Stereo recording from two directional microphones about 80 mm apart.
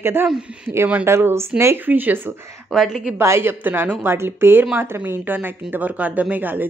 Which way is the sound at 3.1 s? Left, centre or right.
Right.